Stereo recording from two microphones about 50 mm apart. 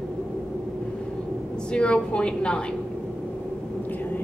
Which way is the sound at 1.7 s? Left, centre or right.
Left.